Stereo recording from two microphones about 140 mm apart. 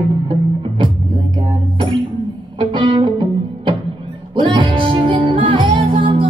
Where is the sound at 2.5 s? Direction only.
35° right (ahead or behind).